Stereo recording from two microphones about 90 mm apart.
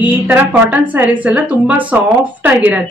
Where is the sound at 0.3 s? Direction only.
20° right (ahead or behind).